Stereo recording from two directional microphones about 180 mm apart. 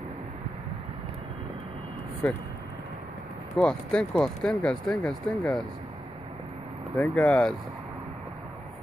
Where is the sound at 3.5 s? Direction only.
5° left (ahead or behind).